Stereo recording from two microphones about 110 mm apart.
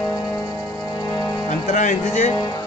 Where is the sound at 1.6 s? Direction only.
90° left.